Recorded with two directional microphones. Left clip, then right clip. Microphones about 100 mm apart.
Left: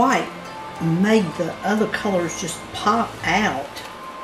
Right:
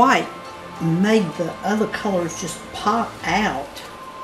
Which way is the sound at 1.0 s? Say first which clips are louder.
Even; 10° right (ahead or behind).